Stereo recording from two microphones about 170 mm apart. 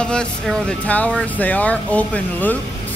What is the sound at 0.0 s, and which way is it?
Speech, 5° left (ahead or behind).